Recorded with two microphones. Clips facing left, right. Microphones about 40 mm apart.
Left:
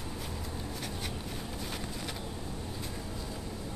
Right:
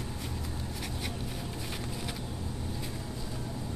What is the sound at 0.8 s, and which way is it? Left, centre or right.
Writing, centre.